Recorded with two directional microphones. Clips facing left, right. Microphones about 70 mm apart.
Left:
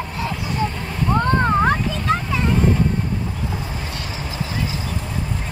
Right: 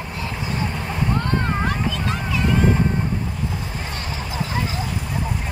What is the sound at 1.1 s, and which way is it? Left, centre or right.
Vehicle, left.